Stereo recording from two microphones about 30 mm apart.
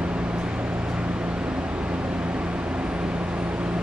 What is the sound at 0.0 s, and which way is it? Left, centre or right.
Vehicle, right.